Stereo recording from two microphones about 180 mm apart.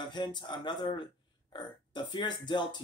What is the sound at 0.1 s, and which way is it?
Speech, 25° left (ahead or behind).